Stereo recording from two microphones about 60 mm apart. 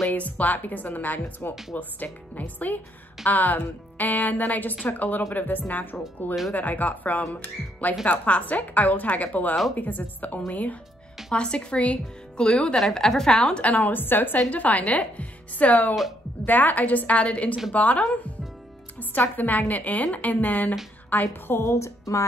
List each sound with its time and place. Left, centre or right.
0.0 s a woman's voice: left
12.7 s a woman's voice: centre; by 22.2 s left